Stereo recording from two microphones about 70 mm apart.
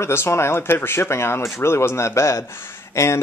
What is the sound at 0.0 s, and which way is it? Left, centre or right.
Speech, left.